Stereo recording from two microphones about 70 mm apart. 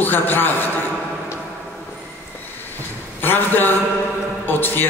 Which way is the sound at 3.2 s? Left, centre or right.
Left.